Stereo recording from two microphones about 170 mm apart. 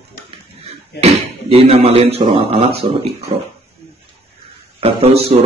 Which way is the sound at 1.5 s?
35° right (ahead or behind).